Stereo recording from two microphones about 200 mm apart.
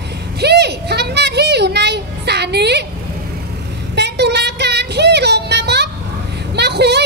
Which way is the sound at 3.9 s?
55° right (ahead or behind).